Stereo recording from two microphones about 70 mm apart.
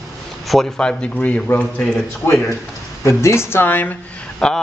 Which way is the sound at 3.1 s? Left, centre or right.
Left.